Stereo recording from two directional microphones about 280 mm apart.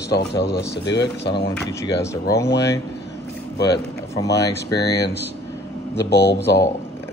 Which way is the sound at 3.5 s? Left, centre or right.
Left.